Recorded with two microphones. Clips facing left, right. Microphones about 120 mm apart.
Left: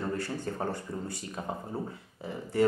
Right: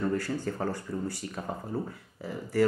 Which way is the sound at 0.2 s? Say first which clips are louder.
Right 2 dB; 25° left (ahead or behind).